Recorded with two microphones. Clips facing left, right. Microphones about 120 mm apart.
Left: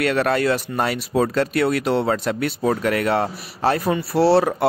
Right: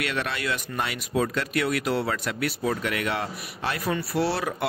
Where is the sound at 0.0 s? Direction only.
45° left (ahead or behind).